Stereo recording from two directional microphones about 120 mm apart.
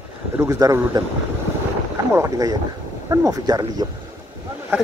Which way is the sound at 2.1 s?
25° right (ahead or behind).